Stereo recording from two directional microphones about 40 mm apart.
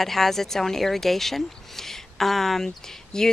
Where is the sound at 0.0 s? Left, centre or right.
Centre.